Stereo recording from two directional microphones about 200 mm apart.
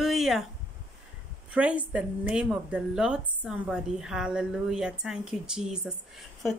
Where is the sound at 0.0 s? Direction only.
Centre (ahead or behind).